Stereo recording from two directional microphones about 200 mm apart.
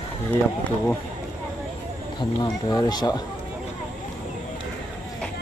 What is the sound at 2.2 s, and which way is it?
Speech, 20° left (ahead or behind).